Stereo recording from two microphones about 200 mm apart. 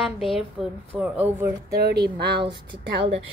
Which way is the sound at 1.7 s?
55° right (ahead or behind).